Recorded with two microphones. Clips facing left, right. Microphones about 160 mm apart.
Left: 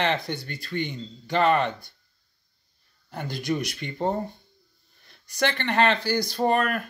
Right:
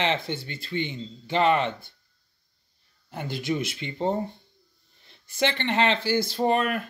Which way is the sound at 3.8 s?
50° left (ahead or behind).